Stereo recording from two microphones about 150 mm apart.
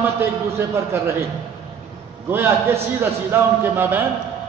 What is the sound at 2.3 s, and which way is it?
A man's voice, 15° right (ahead or behind).